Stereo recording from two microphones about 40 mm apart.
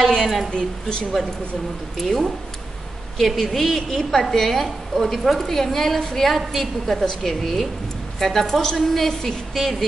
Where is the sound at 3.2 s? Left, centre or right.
Centre.